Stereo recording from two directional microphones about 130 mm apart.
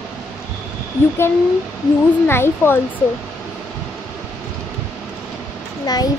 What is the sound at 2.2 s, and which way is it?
Speech, 20° left (ahead or behind).